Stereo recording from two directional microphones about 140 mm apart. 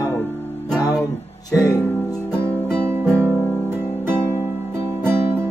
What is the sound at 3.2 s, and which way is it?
Music, 15° right (ahead or behind).